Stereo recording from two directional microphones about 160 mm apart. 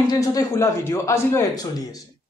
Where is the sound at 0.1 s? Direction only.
25° left (ahead or behind).